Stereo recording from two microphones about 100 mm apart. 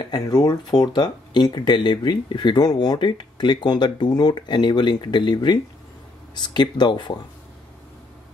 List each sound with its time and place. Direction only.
0.0 s speech: 40° left (ahead or behind)